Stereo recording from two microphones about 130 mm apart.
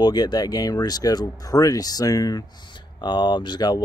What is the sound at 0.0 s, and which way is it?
Speech, 30° left (ahead or behind).